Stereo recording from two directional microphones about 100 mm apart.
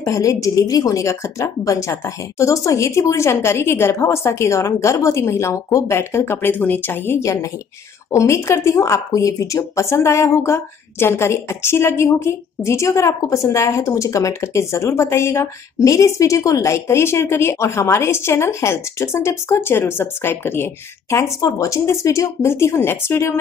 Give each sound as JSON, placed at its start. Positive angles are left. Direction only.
{"t": 0.0, "sound": "speech", "side_deg": 35}